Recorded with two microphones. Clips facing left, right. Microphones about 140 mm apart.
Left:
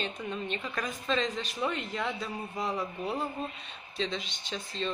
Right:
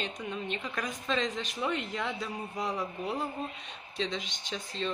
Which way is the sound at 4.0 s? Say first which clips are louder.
Even; 15° right (ahead or behind).